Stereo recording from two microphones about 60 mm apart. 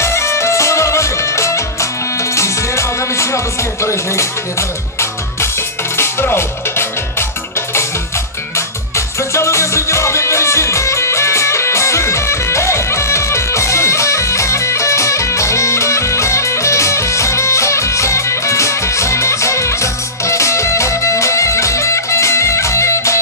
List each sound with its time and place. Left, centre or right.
0.0 s music: left
3.8 s speech: left
6.3 s music: left
8.5 s music: left